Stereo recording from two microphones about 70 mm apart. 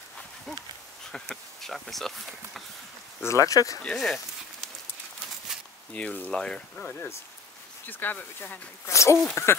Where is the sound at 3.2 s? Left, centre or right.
Left.